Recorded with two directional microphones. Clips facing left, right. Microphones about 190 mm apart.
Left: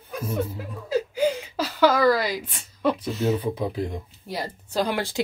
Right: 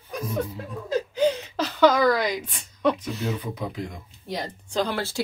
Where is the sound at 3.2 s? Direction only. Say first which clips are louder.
Left 5 dB; 30° left (ahead or behind).